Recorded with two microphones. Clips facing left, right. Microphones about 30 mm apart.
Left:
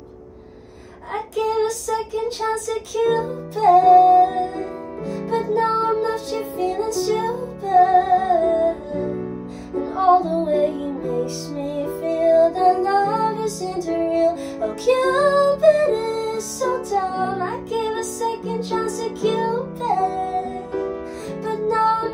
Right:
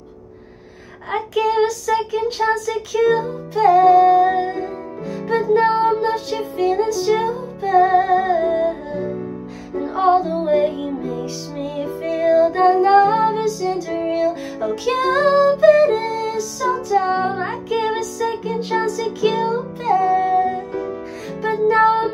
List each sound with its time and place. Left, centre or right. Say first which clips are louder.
1.1 s music: right 4 dB; right
3.0 s music: right 3 dB; right
8.2 s music: right 1 dB; right
8.5 s music: even; right
9.0 s music: even; centre
9.9 s music: even; right
11.8 s music: even; right
17.4 s music: right 2 dB; right
18.7 s music: right 4 dB; right
20.7 s music: even; centre
21.4 s music: right 5 dB; right